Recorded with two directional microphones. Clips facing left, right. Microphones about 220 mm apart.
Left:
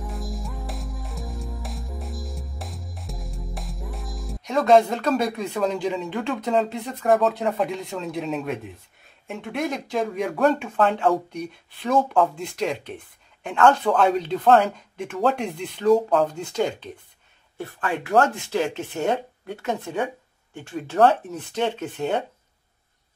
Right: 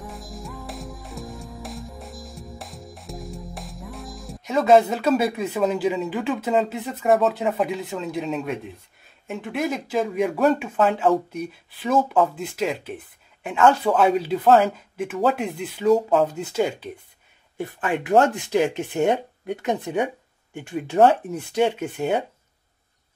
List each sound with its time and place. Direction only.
0.0 s music: centre (ahead or behind)
9.3 s speech: centre (ahead or behind)
17.6 s speech: 20° right (ahead or behind)